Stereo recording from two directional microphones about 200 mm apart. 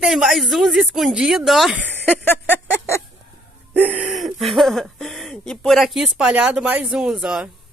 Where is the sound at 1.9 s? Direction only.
10° left (ahead or behind).